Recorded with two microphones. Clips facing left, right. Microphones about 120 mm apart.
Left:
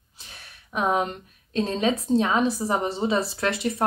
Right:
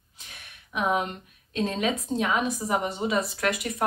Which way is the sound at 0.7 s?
35° left (ahead or behind).